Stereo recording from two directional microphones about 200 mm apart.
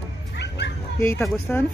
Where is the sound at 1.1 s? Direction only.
10° left (ahead or behind).